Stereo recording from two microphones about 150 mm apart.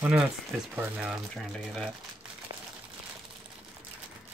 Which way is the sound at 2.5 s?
25° right (ahead or behind).